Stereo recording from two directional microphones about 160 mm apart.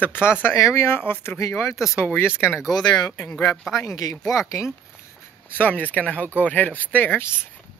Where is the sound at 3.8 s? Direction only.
20° left (ahead or behind).